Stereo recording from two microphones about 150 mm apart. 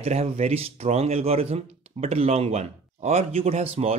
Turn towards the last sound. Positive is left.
turn(degrees=-45)  # may be behind; listen again after turning